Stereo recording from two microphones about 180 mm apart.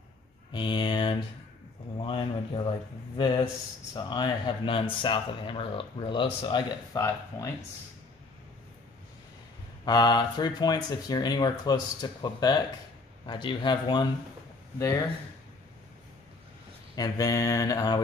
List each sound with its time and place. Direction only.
0.5 s a sound: 25° left (ahead or behind)
3.2 s speech: 25° left (ahead or behind)
9.8 s speech: 25° left (ahead or behind)
16.9 s speech: 20° left (ahead or behind)